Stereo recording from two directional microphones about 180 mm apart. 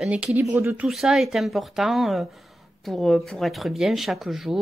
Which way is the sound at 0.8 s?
Centre (ahead or behind).